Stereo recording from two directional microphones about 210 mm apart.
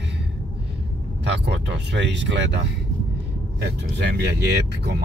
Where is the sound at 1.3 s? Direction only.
55° right (ahead or behind).